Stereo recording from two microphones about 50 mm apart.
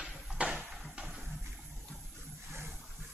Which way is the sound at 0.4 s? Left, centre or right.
Right.